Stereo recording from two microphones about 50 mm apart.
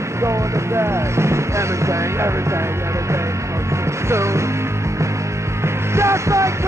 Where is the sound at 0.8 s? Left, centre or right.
Right.